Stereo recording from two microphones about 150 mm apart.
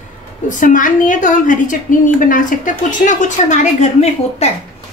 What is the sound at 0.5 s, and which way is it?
A woman's voice, 60° left (ahead or behind).